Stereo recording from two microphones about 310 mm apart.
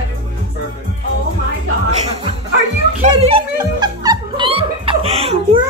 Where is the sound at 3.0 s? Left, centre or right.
Centre.